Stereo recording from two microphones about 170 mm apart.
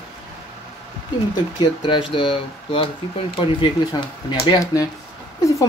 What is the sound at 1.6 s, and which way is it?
Speech, 25° left (ahead or behind).